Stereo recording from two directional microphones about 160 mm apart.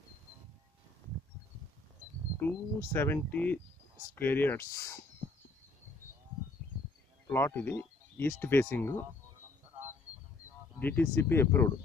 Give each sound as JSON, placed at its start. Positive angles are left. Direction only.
{"t": 2.4, "sound": "speech", "side_deg": 15}
{"t": 7.3, "sound": "speech", "side_deg": 15}
{"t": 10.8, "sound": "speech", "side_deg": 15}